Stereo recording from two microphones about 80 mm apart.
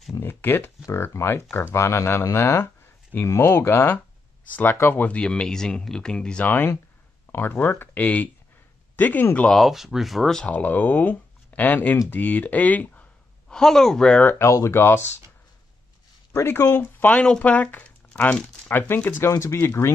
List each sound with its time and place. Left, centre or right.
0.2 s speech: left; by 6.4 s centre
6.4 s speech: left
9.5 s speech: centre
10.4 s speech: centre
13.5 s speech: centre
14.4 s speech: left
16.3 s speech: left
16.7 s speech: left
19.1 s speech: left